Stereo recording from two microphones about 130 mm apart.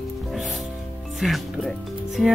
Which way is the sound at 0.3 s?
Centre (ahead or behind).